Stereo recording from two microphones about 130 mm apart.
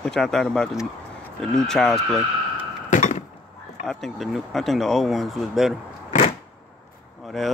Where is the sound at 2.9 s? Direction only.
70° left (ahead or behind).